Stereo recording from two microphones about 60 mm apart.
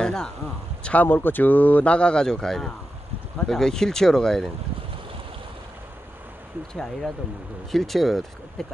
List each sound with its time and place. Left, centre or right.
0.0 s speech: centre
1.0 s speech: left; by 4.5 s centre
6.7 s speech: centre